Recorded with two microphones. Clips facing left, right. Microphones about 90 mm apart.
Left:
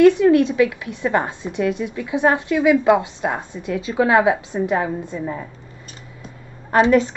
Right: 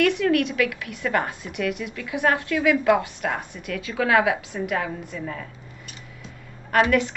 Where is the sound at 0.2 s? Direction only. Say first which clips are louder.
Left 7 dB; 25° left (ahead or behind).